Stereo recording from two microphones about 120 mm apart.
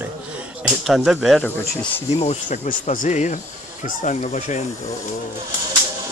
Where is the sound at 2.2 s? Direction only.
80° left.